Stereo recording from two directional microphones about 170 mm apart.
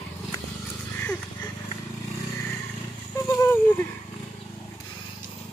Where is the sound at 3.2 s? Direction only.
20° left (ahead or behind).